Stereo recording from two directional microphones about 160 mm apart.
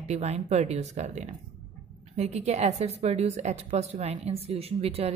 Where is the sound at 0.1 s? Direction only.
45° right (ahead or behind).